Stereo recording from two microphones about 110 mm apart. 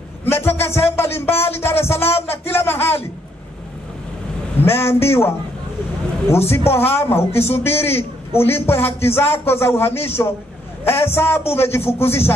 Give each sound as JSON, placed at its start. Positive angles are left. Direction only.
{"t": 0.2, "sound": "a sound", "side_deg": 20}
{"t": 0.7, "sound": "music", "side_deg": 20}
{"t": 4.6, "sound": "a man's voice", "side_deg": 20}
{"t": 6.7, "sound": "a man's voice", "side_deg": 20}
{"t": 10.8, "sound": "a sound", "side_deg": 20}
{"t": 11.1, "sound": "a man's voice", "side_deg": 20}